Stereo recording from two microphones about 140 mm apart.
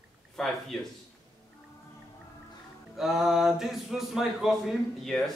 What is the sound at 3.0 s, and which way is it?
Speech, centre (ahead or behind).